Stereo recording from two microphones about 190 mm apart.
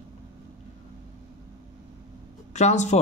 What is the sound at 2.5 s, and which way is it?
Speech, 35° left (ahead or behind).